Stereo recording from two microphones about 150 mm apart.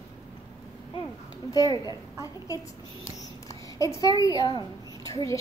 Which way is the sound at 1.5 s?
25° left (ahead or behind).